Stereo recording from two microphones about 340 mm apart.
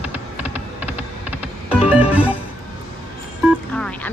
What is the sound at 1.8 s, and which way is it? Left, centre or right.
Music, centre.